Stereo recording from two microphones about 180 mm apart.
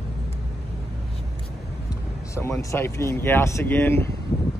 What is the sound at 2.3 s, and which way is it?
Speech, 15° left (ahead or behind).